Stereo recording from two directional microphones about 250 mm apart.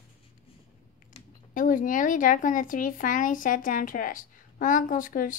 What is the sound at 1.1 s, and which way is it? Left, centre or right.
Speech, left.